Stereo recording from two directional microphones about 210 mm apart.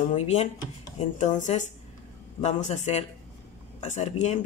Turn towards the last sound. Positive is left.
turn(degrees=35)  # may be behind; listen again after turning